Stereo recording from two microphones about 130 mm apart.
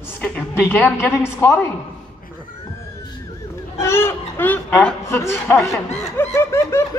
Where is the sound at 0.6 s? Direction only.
15° left (ahead or behind).